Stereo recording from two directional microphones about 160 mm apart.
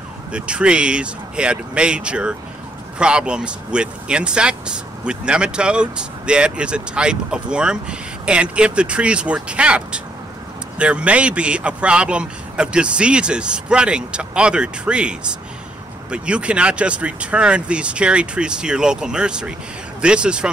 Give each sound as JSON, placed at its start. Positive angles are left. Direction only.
{"t": 0.3, "sound": "speech", "side_deg": -5}